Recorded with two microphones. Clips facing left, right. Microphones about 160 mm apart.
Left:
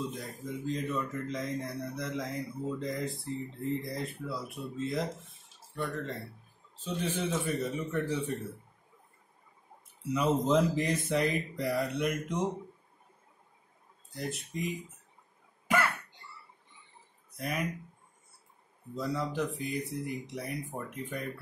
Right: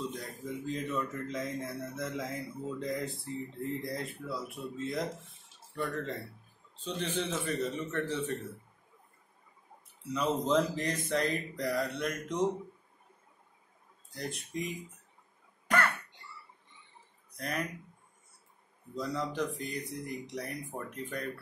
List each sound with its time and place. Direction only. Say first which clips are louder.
0.0 s speech: left 1 dB; centre (ahead or behind)
10.0 s speech: left 3 dB; 10° left (ahead or behind)
14.1 s speech: left 1 dB; centre (ahead or behind)
17.4 s speech: left 1 dB; 10° left (ahead or behind)
18.9 s speech: left 1 dB; 5° left (ahead or behind)